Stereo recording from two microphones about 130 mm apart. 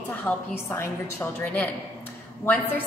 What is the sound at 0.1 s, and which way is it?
A woman's voice, 15° left (ahead or behind).